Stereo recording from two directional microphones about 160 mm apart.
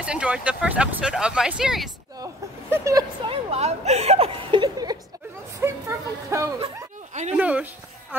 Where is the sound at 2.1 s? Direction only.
20° right (ahead or behind).